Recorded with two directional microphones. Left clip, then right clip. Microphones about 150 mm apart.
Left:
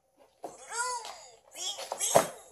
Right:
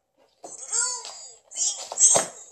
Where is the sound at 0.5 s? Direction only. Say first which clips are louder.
Right 4 dB; 30° left (ahead or behind).